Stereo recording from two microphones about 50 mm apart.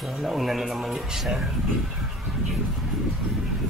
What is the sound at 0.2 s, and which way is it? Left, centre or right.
A man's voice, centre.